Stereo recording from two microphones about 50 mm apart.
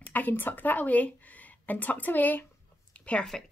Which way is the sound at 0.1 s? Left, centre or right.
Left.